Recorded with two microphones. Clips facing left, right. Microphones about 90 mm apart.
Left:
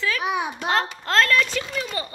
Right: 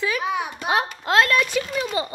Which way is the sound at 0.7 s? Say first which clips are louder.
Right 3 dB; 10° right (ahead or behind).